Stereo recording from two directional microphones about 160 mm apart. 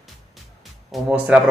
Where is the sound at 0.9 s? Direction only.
5° right (ahead or behind).